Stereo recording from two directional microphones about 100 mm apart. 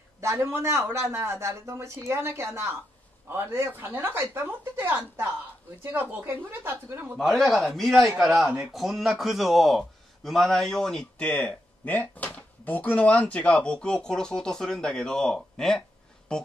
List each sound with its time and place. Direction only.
0.2 s speech: 30° right (ahead or behind)
7.2 s a man's voice: centre (ahead or behind)